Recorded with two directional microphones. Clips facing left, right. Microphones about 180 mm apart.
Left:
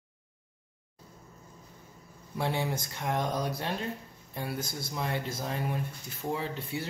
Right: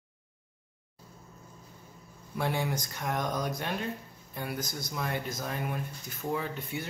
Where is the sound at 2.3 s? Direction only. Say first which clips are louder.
Even; 25° left (ahead or behind).